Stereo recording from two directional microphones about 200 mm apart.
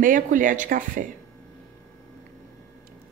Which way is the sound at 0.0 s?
40° right (ahead or behind).